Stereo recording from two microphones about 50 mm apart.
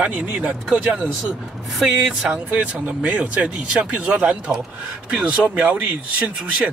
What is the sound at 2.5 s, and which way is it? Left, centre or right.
Speech, right.